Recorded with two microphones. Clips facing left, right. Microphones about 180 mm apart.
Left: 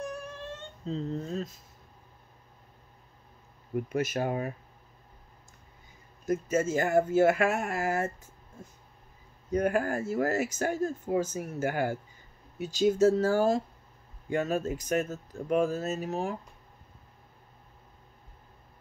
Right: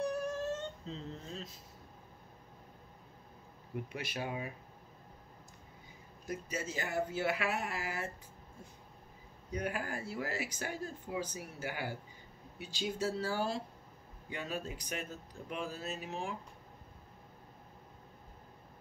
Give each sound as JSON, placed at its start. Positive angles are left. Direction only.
{"t": 0.0, "sound": "a sound", "side_deg": -40}
{"t": 0.8, "sound": "speech", "side_deg": 40}
{"t": 3.7, "sound": "speech", "side_deg": 45}
{"t": 6.2, "sound": "speech", "side_deg": 50}
{"t": 9.5, "sound": "speech", "side_deg": 45}